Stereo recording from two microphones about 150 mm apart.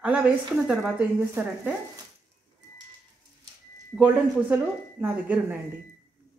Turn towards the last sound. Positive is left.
turn(degrees=-10)  # may be behind; listen again after turning